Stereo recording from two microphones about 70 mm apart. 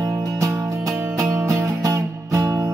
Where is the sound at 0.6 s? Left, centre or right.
Right.